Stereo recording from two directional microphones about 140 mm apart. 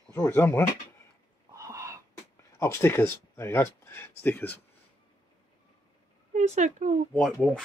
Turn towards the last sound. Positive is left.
turn(degrees=0)  # may be behind; listen again after turning